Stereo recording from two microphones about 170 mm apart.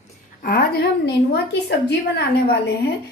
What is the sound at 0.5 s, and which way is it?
A woman's voice, 70° left (ahead or behind).